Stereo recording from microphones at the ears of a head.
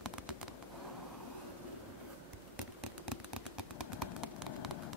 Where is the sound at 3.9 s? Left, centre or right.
Left.